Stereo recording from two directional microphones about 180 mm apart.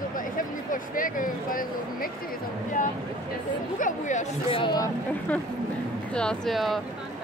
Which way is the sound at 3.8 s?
45° left (ahead or behind).